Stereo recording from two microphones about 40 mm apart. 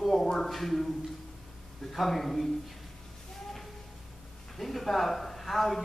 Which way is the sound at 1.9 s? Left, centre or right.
Centre.